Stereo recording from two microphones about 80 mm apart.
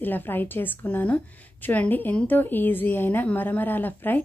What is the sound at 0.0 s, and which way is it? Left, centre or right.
A woman's voice, left.